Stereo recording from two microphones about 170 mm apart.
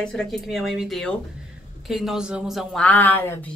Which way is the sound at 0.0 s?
5° left (ahead or behind).